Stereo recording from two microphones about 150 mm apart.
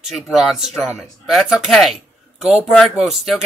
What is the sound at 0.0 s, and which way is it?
Speech, centre (ahead or behind).